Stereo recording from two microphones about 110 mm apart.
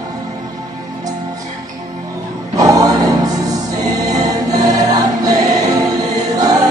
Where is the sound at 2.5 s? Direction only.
35° right (ahead or behind).